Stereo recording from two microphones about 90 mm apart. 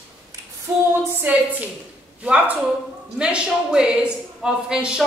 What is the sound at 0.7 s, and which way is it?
Speech, 30° right (ahead or behind).